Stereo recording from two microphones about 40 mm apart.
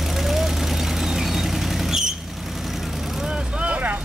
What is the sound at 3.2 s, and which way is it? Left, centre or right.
Vehicle, right.